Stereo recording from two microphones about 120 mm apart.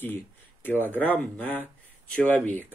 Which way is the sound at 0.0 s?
15° left (ahead or behind).